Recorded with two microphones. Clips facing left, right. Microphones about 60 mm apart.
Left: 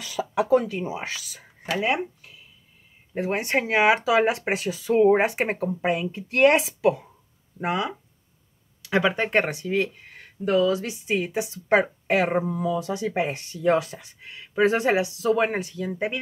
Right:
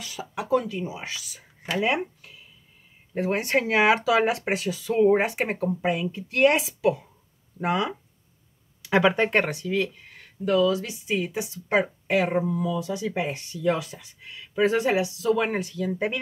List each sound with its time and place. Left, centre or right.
0.7 s speech: left
3.2 s speech: centre
6.1 s speech: left
7.5 s speech: centre
8.8 s speech: centre
9.3 s speech: centre
9.7 s speech: left
15.9 s speech: centre